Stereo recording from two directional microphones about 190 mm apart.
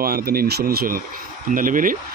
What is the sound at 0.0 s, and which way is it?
Speech, 55° right (ahead or behind).